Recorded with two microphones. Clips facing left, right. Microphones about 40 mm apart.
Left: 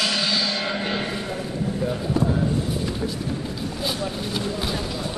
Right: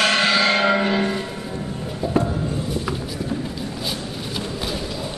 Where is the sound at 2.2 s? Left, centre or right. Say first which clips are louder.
Right 3 dB; right.